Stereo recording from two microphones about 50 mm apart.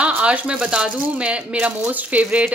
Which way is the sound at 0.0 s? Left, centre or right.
Right.